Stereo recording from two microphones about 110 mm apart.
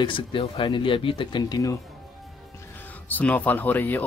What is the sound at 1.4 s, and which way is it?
Speech, 30° left (ahead or behind).